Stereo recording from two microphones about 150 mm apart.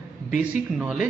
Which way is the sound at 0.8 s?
5° right (ahead or behind).